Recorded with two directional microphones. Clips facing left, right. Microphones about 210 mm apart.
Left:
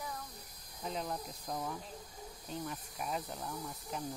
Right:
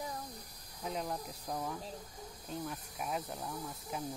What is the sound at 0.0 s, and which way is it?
Snake, 35° right (ahead or behind).